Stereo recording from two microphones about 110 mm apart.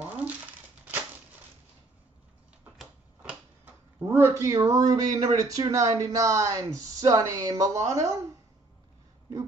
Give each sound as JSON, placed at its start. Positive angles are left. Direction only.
{"t": 0.0, "sound": "crumpling", "side_deg": -15}
{"t": 3.2, "sound": "speech", "side_deg": -15}